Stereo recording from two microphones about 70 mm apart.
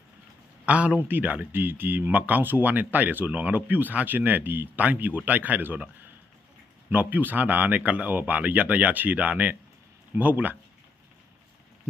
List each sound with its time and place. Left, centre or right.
0.7 s speech: centre
6.9 s speech: right